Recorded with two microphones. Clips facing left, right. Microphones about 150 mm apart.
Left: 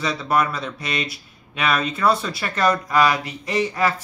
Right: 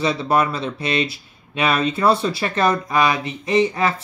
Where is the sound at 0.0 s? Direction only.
25° right (ahead or behind).